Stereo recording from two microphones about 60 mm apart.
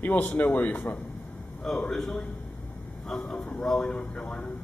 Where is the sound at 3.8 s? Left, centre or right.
Left.